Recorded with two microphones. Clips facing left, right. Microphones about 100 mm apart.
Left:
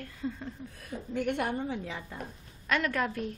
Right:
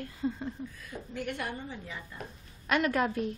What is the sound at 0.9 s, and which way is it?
A woman's voice, 55° left (ahead or behind).